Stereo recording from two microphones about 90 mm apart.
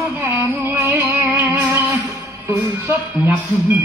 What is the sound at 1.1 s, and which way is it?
Music, 20° right (ahead or behind).